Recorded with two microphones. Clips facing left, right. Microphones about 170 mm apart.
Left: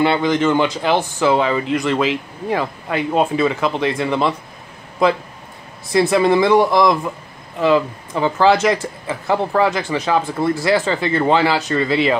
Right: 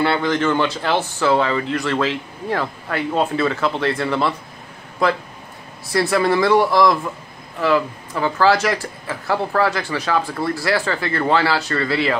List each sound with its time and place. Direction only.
0.0 s speech: 15° left (ahead or behind)